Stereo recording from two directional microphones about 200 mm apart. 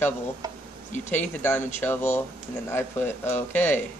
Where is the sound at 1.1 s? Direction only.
10° left (ahead or behind).